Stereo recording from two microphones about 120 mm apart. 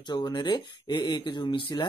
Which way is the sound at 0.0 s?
40° left (ahead or behind).